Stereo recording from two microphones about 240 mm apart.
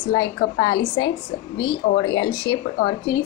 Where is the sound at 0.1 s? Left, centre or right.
Centre.